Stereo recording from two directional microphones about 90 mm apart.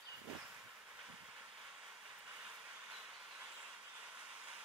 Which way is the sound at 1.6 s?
5° right (ahead or behind).